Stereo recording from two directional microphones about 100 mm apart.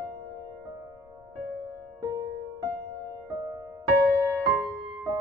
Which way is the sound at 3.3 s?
40° right (ahead or behind).